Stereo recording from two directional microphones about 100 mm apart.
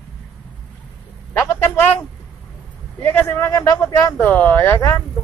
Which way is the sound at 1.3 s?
20° left (ahead or behind).